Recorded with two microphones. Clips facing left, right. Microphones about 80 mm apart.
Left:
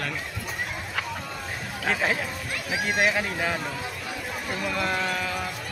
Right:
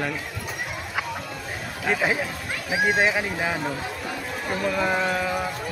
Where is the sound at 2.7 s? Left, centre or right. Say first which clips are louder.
Right 3 dB; right.